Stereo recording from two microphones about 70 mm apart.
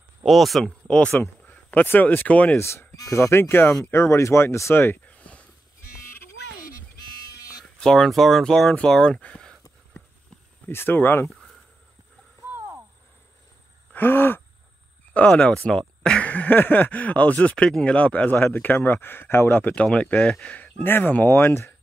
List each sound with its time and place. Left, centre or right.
0.2 s speech: centre
0.8 s speech: centre
2.6 s speech: left
7.8 s speech: centre
10.7 s speech: left
13.9 s a sound: left
15.1 s speech: centre
17.6 s speech: centre
17.9 s speech: centre
19.7 s speech: centre; by 21.7 s left